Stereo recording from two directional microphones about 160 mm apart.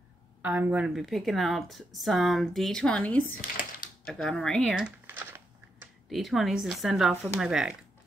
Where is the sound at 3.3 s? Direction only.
60° left (ahead or behind).